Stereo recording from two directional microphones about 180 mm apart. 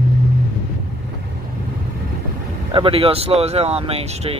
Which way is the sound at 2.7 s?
30° right (ahead or behind).